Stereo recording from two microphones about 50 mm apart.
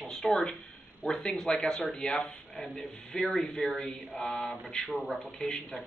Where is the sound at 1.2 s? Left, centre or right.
Centre.